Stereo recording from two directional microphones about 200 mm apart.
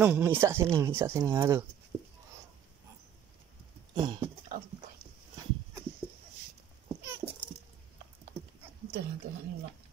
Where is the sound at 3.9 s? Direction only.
25° right (ahead or behind).